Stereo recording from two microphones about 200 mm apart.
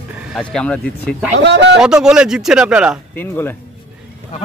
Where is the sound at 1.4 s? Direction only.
60° right (ahead or behind).